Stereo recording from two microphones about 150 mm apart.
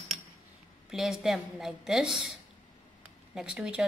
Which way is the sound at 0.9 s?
Centre (ahead or behind).